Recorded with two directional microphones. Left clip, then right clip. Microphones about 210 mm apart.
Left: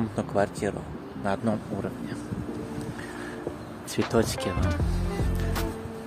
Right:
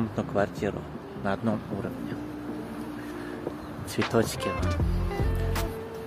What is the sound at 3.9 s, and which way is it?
Speech, 10° left (ahead or behind).